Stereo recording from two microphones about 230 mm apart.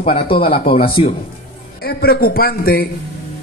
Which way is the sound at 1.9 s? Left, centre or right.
Left.